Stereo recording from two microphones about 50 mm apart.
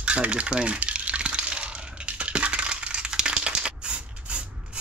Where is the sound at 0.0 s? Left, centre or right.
Right.